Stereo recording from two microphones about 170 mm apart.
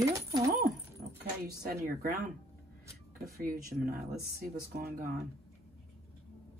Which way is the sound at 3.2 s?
60° right (ahead or behind).